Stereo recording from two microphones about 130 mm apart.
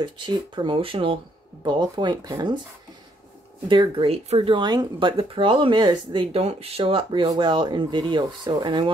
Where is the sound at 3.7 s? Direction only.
40° right (ahead or behind).